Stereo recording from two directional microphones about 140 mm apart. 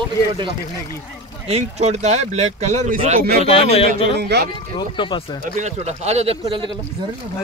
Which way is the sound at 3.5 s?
45° left (ahead or behind).